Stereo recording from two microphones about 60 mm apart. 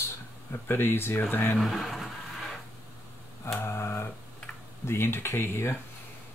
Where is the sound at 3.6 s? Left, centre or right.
Left.